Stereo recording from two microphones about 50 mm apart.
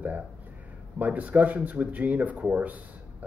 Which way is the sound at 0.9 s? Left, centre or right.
Right.